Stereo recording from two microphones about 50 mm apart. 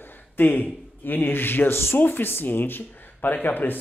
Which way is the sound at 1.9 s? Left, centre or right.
Left.